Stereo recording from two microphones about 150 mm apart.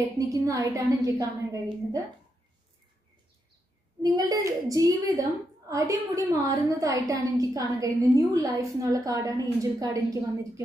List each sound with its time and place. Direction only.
0.2 s a woman's voice: 20° right (ahead or behind)
4.0 s a woman's voice: 25° right (ahead or behind)